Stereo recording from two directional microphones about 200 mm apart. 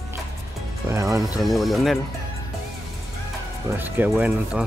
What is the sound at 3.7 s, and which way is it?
Speech, 10° right (ahead or behind).